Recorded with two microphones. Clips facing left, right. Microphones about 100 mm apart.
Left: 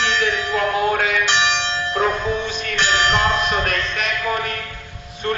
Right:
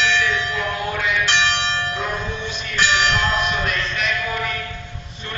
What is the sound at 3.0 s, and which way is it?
Music, 40° left (ahead or behind).